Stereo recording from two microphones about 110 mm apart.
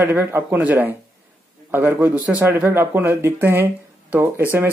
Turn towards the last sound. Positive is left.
turn(degrees=-20)  # may be behind; listen again after turning